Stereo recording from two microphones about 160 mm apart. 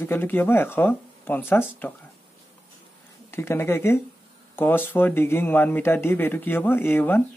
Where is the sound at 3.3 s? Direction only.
15° left (ahead or behind).